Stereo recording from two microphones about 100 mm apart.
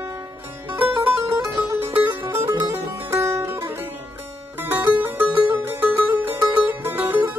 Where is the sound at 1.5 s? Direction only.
20° right (ahead or behind).